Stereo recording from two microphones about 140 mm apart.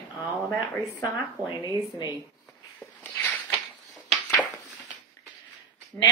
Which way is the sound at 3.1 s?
15° left (ahead or behind).